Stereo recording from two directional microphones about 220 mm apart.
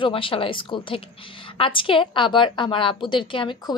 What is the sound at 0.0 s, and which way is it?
A woman's voice, 25° left (ahead or behind).